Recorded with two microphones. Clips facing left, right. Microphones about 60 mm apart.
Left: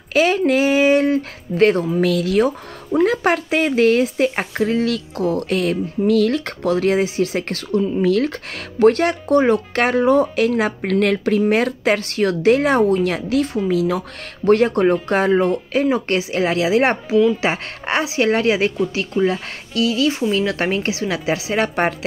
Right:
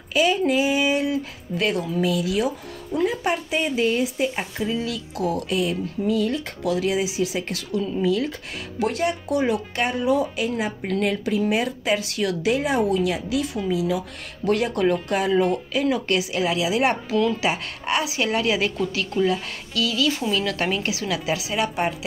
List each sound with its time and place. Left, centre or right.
0.1 s female singing: left
0.5 s a sound: left
2.0 s speech: left
3.1 s speech: left
5.1 s speech: left
5.6 s speech: left
6.6 s speech: left
12.8 s speech: left